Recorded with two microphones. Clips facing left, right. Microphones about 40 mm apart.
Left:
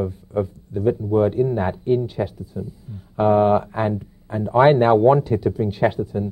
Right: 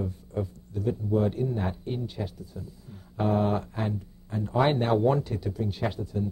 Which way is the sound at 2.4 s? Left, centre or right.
Centre.